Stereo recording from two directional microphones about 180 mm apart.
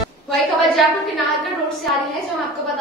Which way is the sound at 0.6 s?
Centre (ahead or behind).